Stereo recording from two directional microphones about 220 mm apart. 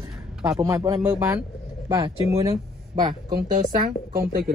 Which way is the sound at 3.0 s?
35° right (ahead or behind).